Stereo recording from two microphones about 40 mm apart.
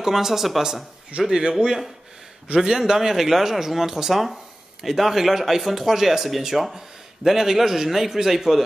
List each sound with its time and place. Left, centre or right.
0.0 s speech: centre
1.1 s speech: right
2.5 s speech: centre